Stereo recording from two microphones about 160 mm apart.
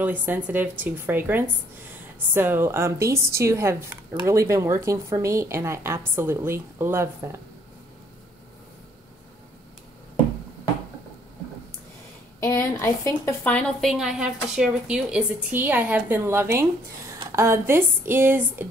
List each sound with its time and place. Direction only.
0.0 s a woman's voice: 10° right (ahead or behind)
12.4 s a woman's voice: 15° left (ahead or behind); by 18.7 s 10° right (ahead or behind)